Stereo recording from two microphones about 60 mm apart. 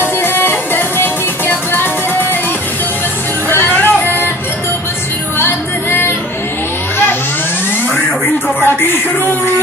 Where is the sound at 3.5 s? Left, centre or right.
Left.